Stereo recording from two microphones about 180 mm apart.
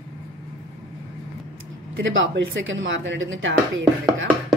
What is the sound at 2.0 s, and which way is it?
Speech, 90° right.